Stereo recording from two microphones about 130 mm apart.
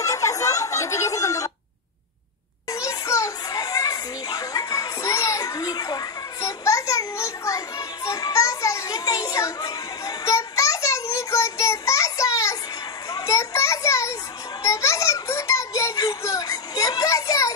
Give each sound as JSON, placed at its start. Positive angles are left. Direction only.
{"t": 0.0, "sound": "chatter", "side_deg": 25}
{"t": 2.7, "sound": "children playing", "side_deg": 25}
{"t": 14.6, "sound": "a sound", "side_deg": 25}